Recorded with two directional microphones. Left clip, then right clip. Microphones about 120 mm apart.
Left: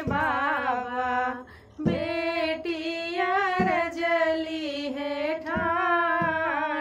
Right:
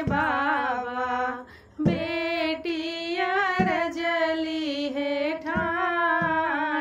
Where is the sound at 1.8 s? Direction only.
20° right (ahead or behind).